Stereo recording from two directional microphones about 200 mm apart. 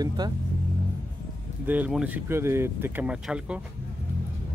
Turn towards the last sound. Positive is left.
turn(degrees=-5)  # may be behind; listen again after turning